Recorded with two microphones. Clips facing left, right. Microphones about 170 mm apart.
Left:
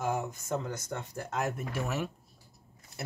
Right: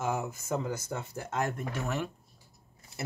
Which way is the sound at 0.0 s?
5° right (ahead or behind).